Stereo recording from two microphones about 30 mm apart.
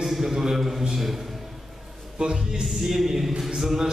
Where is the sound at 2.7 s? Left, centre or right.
Centre.